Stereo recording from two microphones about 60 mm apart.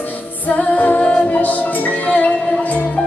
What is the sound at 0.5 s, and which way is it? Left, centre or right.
Music, left.